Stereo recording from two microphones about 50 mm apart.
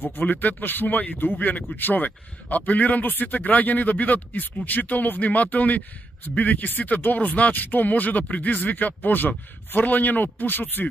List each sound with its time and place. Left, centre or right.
0.1 s a man's voice: left